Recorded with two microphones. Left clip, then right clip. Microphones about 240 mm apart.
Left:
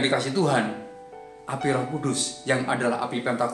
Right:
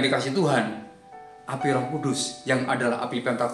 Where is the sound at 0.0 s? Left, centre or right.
Centre.